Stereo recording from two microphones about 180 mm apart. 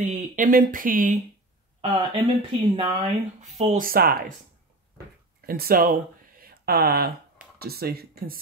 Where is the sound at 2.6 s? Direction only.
25° right (ahead or behind).